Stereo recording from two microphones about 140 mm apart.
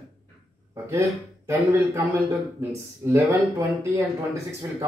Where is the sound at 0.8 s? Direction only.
20° right (ahead or behind).